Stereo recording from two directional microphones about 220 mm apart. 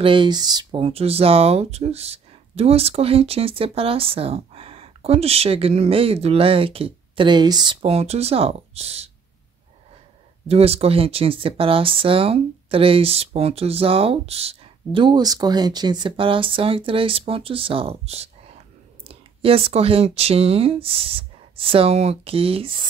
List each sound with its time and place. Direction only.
0.0 s speech: 20° right (ahead or behind)
10.5 s speech: 25° right (ahead or behind)